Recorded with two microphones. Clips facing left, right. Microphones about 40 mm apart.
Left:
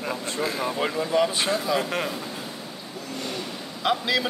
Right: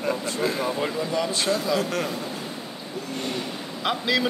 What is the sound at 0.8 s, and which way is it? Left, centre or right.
Speech, left.